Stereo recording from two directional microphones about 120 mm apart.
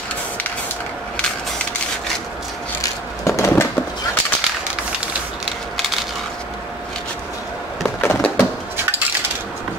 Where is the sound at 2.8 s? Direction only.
25° left (ahead or behind).